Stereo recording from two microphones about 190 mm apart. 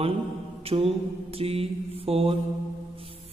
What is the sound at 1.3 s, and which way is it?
A man's voice, 30° right (ahead or behind).